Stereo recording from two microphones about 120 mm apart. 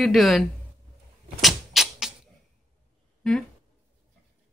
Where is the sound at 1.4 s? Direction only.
Centre (ahead or behind).